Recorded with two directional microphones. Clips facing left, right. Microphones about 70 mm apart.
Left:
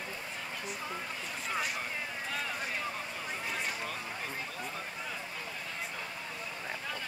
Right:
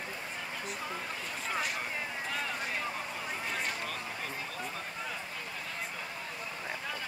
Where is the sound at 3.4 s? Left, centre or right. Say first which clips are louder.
Even; centre.